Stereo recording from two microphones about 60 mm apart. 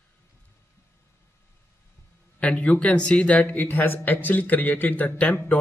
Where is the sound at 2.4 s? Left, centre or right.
Left.